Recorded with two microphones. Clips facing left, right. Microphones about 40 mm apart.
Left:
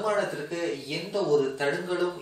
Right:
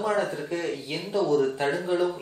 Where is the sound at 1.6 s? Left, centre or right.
Centre.